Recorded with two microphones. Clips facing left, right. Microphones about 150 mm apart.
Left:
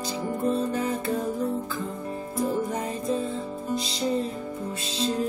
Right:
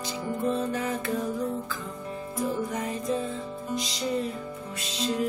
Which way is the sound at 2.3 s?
30° left (ahead or behind).